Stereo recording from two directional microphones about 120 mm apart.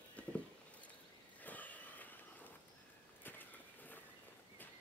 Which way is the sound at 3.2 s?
15° left (ahead or behind).